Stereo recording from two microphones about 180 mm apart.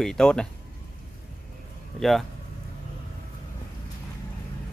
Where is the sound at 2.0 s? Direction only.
Centre (ahead or behind).